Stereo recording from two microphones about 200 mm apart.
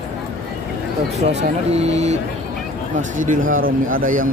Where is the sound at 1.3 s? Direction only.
35° right (ahead or behind).